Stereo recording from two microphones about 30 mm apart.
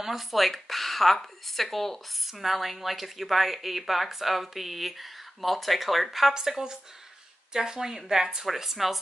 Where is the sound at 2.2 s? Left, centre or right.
Centre.